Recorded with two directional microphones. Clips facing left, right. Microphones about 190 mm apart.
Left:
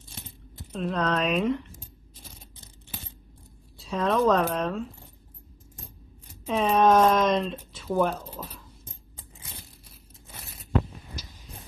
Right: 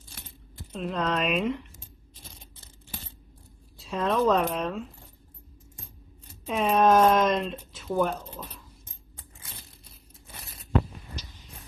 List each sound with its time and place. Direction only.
0.7 s speech: centre (ahead or behind)
2.6 s coin: 15° left (ahead or behind)
3.7 s a woman's voice: centre (ahead or behind)
6.4 s speech: 5° right (ahead or behind)
9.4 s a sound: 15° left (ahead or behind)
10.3 s a sound: 5° left (ahead or behind)